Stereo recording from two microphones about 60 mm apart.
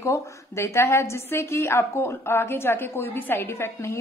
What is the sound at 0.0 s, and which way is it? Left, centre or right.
A woman's voice, left.